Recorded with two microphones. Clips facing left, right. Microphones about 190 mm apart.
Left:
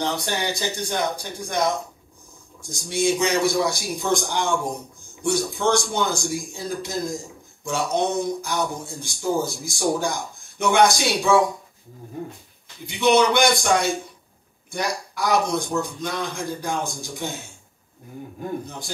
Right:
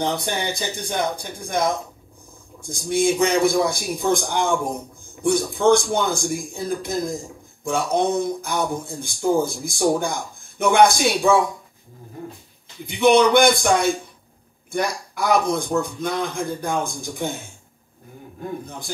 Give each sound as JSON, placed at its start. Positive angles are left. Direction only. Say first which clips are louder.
{"t": 0.1, "sound": "a man's voice", "louder": "right 1 dB", "side_deg": -55}
{"t": 2.6, "sound": "a man's voice", "louder": "right 3 dB", "side_deg": -55}
{"t": 12.8, "sound": "a man's voice", "louder": "right 3 dB", "side_deg": -55}